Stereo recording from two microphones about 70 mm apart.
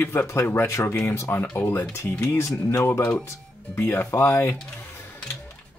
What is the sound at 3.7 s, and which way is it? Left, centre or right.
Speech, left.